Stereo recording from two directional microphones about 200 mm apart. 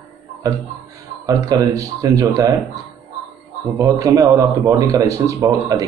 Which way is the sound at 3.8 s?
15° right (ahead or behind).